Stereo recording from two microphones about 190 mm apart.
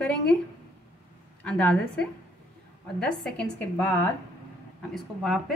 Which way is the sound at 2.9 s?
5° left (ahead or behind).